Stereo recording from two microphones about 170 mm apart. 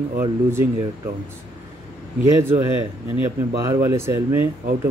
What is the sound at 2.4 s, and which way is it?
Speech, 15° right (ahead or behind).